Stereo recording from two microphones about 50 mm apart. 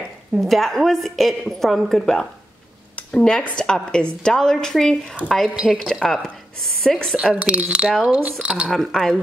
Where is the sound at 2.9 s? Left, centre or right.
Left.